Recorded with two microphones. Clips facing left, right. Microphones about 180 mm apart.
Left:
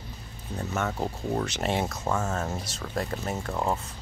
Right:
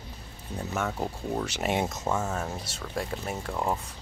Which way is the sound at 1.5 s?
10° right (ahead or behind).